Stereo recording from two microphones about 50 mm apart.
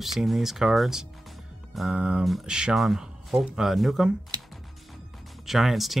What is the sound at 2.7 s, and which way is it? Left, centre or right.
Speech, centre.